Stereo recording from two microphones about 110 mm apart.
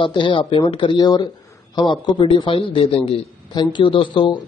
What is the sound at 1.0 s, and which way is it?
A man's voice, 40° left (ahead or behind).